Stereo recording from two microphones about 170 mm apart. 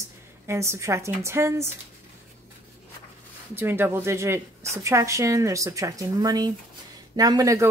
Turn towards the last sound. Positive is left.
turn(degrees=-20)  # may be behind; listen again after turning